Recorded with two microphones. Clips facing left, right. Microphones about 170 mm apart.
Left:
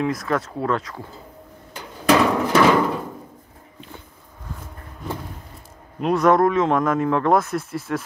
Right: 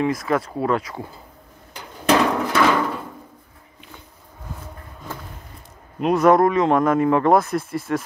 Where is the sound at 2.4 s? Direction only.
15° left (ahead or behind).